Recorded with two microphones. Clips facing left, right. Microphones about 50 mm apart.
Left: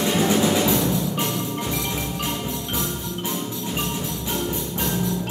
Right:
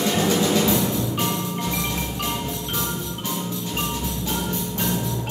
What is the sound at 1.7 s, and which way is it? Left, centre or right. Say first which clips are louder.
Tubular bells: even; centre.